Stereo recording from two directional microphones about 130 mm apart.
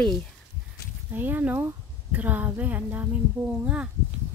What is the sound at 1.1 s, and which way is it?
A woman's voice, 15° right (ahead or behind).